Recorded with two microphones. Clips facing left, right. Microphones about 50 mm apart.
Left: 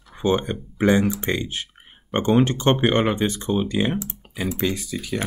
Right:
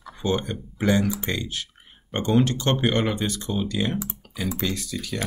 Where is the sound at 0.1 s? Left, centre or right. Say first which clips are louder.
Left 4 dB; left.